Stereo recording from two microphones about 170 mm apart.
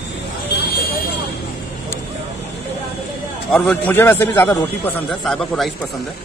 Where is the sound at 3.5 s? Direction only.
5° left (ahead or behind).